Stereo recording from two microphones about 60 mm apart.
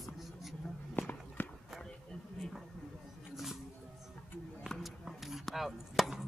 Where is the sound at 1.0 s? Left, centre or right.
Left.